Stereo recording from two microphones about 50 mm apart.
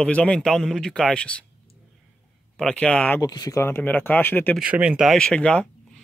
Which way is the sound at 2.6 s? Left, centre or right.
Centre.